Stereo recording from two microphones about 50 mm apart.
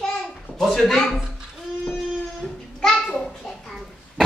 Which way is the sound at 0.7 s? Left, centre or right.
Centre.